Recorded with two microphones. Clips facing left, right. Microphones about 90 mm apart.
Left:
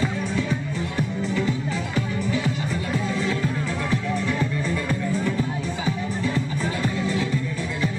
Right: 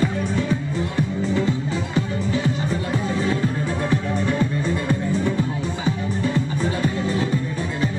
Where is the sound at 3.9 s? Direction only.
20° right (ahead or behind).